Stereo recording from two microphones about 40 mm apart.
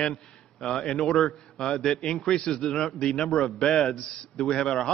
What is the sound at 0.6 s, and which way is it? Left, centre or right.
A man's voice, centre.